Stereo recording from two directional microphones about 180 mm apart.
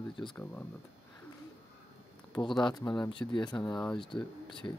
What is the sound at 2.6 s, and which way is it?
Speech, 25° left (ahead or behind).